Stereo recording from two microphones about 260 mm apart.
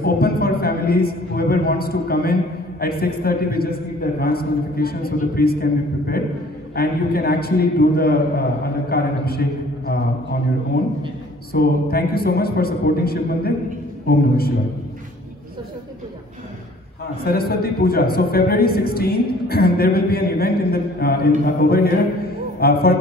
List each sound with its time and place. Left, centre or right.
0.0 s a man's voice: left
11.5 s a man's voice: left
17.2 s a man's voice: left